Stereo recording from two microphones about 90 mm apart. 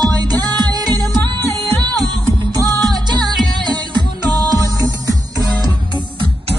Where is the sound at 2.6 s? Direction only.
50° right (ahead or behind).